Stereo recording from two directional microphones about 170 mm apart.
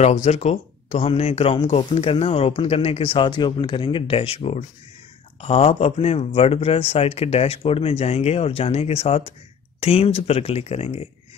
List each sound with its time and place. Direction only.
0.0 s speech: 40° left (ahead or behind)